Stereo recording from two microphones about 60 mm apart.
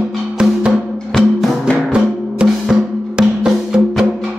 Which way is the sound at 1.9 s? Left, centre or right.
Centre.